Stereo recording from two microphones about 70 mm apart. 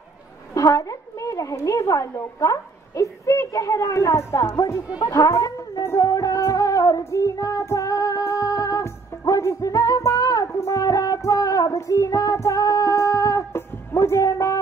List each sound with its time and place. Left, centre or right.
0.6 s a woman's voice: left
5.9 s music: left
8.8 s music: left
13.5 s music: left